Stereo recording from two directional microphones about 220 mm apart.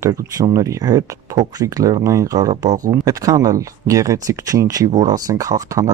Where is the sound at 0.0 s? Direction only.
15° right (ahead or behind).